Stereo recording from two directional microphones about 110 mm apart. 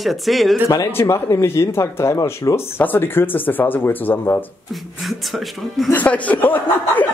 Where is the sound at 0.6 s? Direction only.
30° left (ahead or behind).